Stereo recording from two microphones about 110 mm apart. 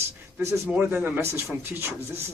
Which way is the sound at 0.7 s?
10° right (ahead or behind).